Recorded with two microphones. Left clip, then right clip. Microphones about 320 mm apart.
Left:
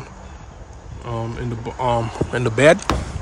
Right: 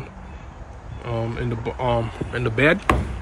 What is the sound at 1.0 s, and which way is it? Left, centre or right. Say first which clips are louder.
Speech: right 1 dB; centre.